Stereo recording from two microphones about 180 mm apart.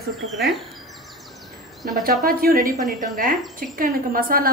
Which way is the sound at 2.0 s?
55° right (ahead or behind).